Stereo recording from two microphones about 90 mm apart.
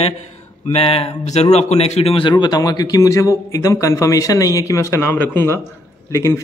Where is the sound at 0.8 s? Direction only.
90° left.